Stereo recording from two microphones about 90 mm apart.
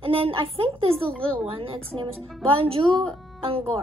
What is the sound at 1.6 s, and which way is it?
Speech, 90° right.